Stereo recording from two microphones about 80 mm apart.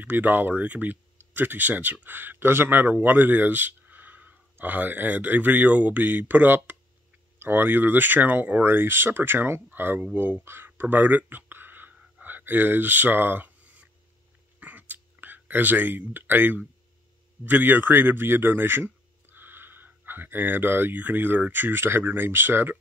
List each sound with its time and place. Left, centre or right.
0.0 s speech: right
10.1 s a sound: right
14.6 s whispering: right
17.5 s a man's voice: right